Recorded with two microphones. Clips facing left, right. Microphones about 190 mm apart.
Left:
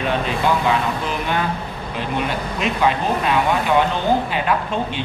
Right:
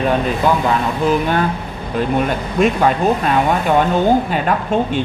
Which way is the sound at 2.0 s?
45° right (ahead or behind).